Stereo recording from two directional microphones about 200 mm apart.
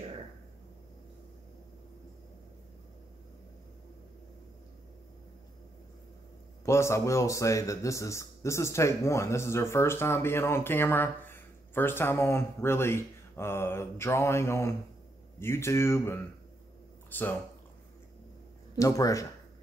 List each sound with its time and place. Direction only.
6.6 s speech: 15° left (ahead or behind)
18.8 s speech: 15° left (ahead or behind)